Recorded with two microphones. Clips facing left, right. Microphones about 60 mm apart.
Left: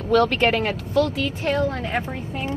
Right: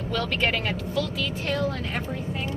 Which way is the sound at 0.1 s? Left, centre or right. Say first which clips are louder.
Left 8 dB; left.